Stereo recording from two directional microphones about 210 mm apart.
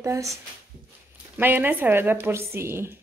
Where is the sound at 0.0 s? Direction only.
15° right (ahead or behind).